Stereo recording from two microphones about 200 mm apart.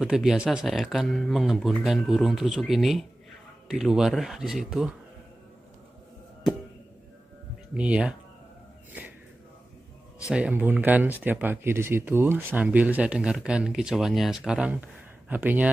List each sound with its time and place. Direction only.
0.0 s speech: centre (ahead or behind)
7.7 s speech: 5° right (ahead or behind)
10.3 s speech: 5° right (ahead or behind)